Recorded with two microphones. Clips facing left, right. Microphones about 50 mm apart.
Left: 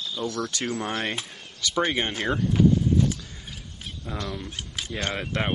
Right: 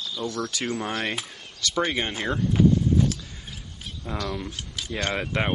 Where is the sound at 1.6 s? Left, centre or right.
Centre.